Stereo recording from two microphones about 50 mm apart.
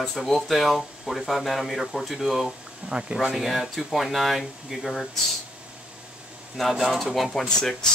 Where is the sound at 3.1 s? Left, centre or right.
Centre.